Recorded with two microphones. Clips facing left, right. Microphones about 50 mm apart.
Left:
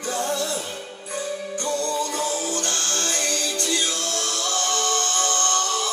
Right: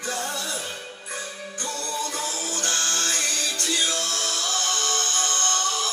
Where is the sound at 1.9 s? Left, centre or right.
Centre.